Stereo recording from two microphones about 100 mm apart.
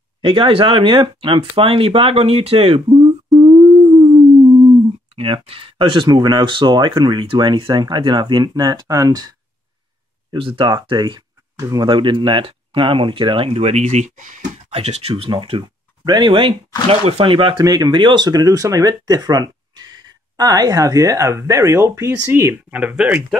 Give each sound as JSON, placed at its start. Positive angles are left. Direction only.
{"t": 0.2, "sound": "speech", "side_deg": -60}
{"t": 4.0, "sound": "a sound", "side_deg": -45}
{"t": 5.1, "sound": "speech", "side_deg": -65}
{"t": 10.3, "sound": "speech", "side_deg": -65}
{"t": 10.7, "sound": "speech", "side_deg": -50}
{"t": 11.5, "sound": "speech", "side_deg": -35}
{"t": 11.9, "sound": "speech", "side_deg": -55}
{"t": 15.2, "sound": "speech", "side_deg": -60}
{"t": 16.0, "sound": "speech", "side_deg": -45}
{"t": 16.9, "sound": "speech", "side_deg": -80}
{"t": 17.6, "sound": "speech", "side_deg": -40}
{"t": 17.9, "sound": "speech", "side_deg": -50}
{"t": 22.8, "sound": "speech", "side_deg": -15}